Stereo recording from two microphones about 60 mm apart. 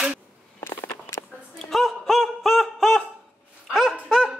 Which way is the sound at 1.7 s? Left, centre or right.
Centre.